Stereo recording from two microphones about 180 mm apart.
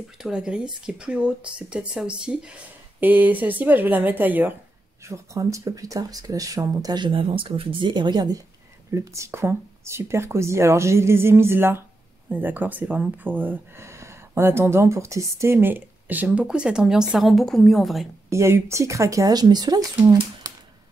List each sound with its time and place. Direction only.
0.2 s speech: 5° right (ahead or behind)
18.3 s speech: 15° right (ahead or behind)